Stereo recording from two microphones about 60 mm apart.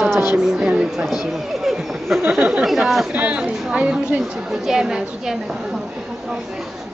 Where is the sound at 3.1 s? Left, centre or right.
Right.